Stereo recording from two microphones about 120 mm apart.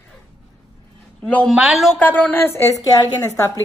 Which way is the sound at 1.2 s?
10° left (ahead or behind).